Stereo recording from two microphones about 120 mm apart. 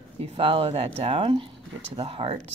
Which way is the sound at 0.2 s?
50° right (ahead or behind).